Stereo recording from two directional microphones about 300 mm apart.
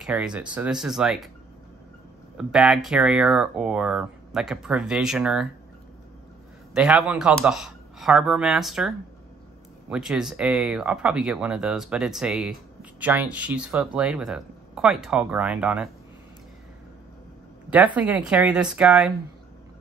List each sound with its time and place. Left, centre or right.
0.0 s speech: centre
2.3 s speech: centre
6.7 s speech: centre
17.9 s speech: centre